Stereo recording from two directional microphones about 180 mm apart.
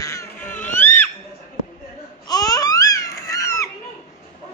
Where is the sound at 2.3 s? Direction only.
20° left (ahead or behind).